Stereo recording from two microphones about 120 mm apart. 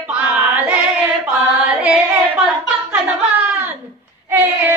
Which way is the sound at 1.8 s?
10° right (ahead or behind).